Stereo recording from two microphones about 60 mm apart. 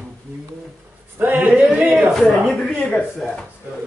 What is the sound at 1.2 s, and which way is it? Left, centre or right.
Speech, right.